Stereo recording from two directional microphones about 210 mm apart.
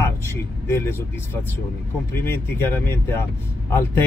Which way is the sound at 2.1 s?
10° left (ahead or behind).